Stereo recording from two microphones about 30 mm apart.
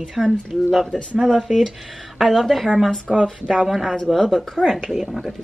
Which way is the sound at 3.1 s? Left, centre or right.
Right.